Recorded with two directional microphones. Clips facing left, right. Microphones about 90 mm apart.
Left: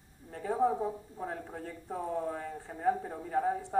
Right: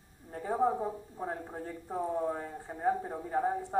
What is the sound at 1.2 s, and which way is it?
A man's voice, 25° right (ahead or behind).